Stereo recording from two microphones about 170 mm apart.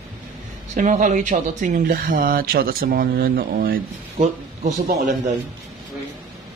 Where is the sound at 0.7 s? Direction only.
45° right (ahead or behind).